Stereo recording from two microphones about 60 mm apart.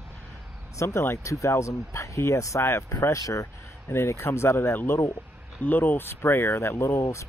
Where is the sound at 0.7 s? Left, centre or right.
Left.